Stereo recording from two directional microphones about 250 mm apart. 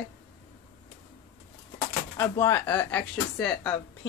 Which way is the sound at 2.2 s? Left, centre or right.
Centre.